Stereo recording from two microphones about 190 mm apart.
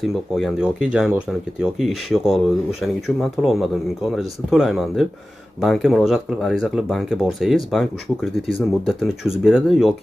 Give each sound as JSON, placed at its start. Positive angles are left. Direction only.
{"t": 0.0, "sound": "speech", "side_deg": 0}